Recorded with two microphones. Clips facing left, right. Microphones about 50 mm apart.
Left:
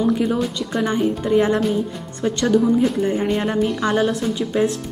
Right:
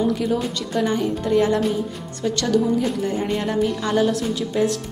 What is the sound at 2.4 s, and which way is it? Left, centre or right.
A woman's voice, centre.